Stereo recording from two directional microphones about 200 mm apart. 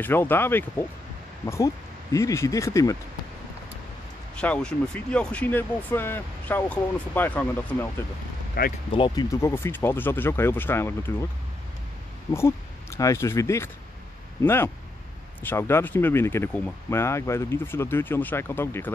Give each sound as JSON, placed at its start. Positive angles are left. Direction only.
{"t": 0.0, "sound": "speech", "side_deg": 10}
{"t": 4.4, "sound": "speech", "side_deg": 5}
{"t": 8.6, "sound": "speech", "side_deg": 50}
{"t": 8.9, "sound": "speech", "side_deg": 20}
{"t": 12.3, "sound": "speech", "side_deg": 15}